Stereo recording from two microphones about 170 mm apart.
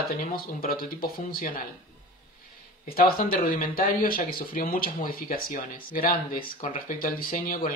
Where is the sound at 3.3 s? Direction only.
55° left (ahead or behind).